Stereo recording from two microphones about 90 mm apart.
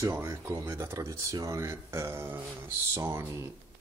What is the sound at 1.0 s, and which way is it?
Speech, 40° right (ahead or behind).